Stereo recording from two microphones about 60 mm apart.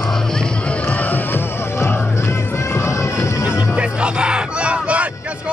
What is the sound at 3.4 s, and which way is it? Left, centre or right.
Music, centre.